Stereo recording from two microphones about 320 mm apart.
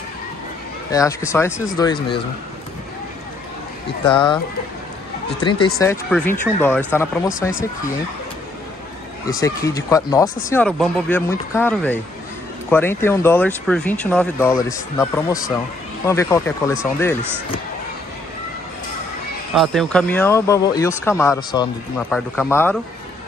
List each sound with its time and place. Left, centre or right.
0.9 s speech: centre
4.0 s speech: centre
5.4 s speech: centre
9.4 s speech: centre
19.5 s speech: centre